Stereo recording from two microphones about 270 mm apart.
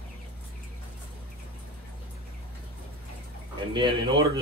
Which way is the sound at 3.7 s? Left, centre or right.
Centre.